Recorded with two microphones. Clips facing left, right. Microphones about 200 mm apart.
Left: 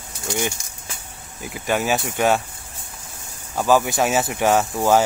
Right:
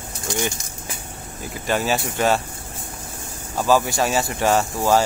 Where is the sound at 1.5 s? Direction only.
10° left (ahead or behind).